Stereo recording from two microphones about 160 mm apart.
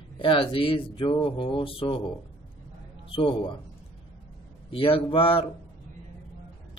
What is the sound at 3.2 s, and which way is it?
Speech, 30° left (ahead or behind).